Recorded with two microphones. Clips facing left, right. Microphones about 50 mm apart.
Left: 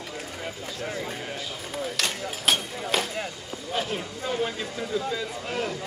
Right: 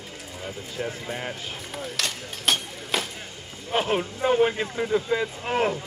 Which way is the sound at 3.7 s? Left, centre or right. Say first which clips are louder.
Right 6 dB; right.